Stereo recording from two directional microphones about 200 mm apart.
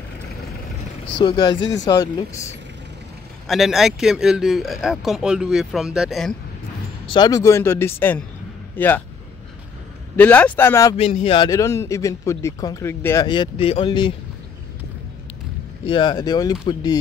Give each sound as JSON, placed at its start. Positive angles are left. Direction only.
{"t": 1.1, "sound": "speech", "side_deg": 25}
{"t": 3.4, "sound": "speech", "side_deg": 0}
{"t": 7.1, "sound": "speech", "side_deg": 20}
{"t": 10.1, "sound": "speech", "side_deg": 10}
{"t": 15.8, "sound": "speech", "side_deg": 25}